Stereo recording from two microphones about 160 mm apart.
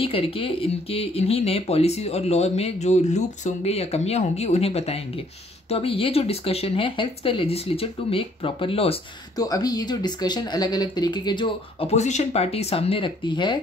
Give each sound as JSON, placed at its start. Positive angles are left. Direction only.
{"t": 0.0, "sound": "speech", "side_deg": 35}
{"t": 9.4, "sound": "speech", "side_deg": 25}